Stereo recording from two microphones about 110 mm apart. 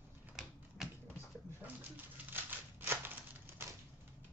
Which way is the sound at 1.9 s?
15° right (ahead or behind).